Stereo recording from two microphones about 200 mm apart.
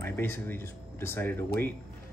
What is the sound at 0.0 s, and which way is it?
Speech, 10° left (ahead or behind).